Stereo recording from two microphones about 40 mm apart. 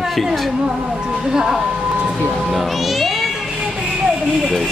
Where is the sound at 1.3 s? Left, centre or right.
Centre.